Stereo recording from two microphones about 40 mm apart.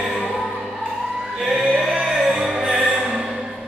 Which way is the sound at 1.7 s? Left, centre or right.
Centre.